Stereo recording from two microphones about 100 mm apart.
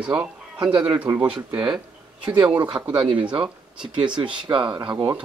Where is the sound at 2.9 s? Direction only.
55° right (ahead or behind).